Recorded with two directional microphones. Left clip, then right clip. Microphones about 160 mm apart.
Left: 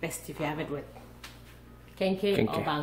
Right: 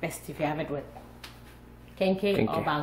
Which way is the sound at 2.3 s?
10° left (ahead or behind).